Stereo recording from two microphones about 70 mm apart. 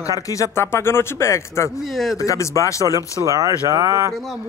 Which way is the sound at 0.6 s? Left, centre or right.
Left.